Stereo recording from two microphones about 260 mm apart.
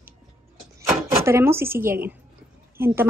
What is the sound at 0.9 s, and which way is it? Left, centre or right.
Speech, centre.